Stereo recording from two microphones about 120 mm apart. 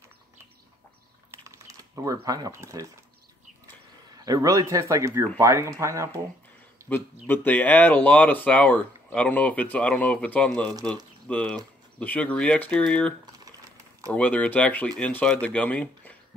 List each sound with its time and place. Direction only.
1.3 s typing: 25° right (ahead or behind)
2.2 s speech: 30° right (ahead or behind)
4.1 s speech: 30° right (ahead or behind)
6.9 s speech: 15° left (ahead or behind)
14.1 s speech: 10° left (ahead or behind)